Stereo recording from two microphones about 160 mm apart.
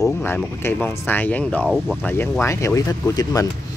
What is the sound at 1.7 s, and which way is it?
Speech, centre (ahead or behind).